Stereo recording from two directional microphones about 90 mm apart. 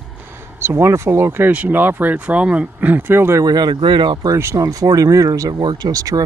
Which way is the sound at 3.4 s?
50° right (ahead or behind).